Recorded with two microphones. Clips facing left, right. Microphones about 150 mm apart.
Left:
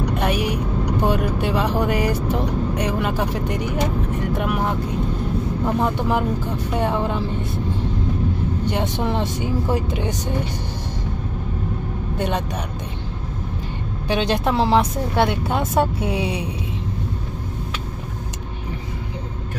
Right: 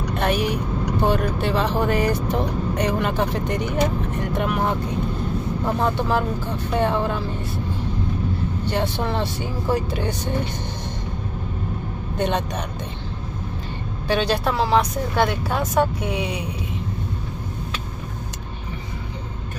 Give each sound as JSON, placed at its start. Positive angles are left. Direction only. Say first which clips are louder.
{"t": 0.1, "sound": "speech", "louder": "right 4 dB", "side_deg": 5}
{"t": 8.6, "sound": "speech", "louder": "even", "side_deg": 15}
{"t": 12.2, "sound": "speech", "louder": "right 1 dB", "side_deg": 5}
{"t": 14.0, "sound": "speech", "louder": "left 1 dB", "side_deg": 20}